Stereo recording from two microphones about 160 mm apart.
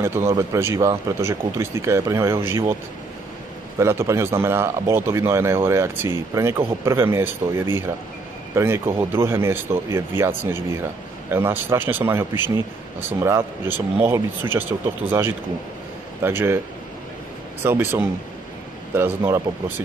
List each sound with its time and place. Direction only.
0.0 s speech: 15° right (ahead or behind)
3.7 s speech: 15° right (ahead or behind)
17.6 s speech: 15° right (ahead or behind)